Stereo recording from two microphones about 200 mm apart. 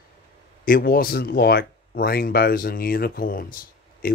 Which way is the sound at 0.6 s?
45° left (ahead or behind).